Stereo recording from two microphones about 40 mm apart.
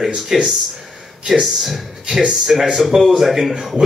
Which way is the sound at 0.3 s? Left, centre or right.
Centre.